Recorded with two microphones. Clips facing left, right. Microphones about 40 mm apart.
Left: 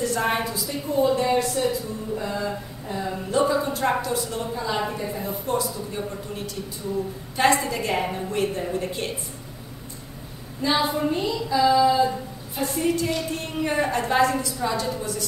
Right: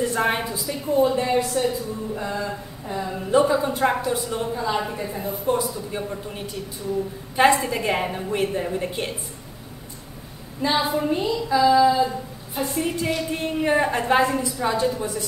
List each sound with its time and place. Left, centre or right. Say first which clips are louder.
0.0 s a sound: right 2 dB; right
0.4 s a woman's voice: even; centre
2.3 s a sound: even; centre
3.3 s a woman's voice: right 3 dB; centre
4.6 s a woman's voice: right 1 dB; centre
5.6 s a woman's voice: right 1 dB; right
7.5 s a woman's voice: right 1 dB; centre
10.6 s a woman's voice: right 1 dB; right
11.1 s a woman's voice: right 2 dB; centre
11.5 s a sound: right 2 dB; centre
12.5 s a woman's voice: left 1 dB; centre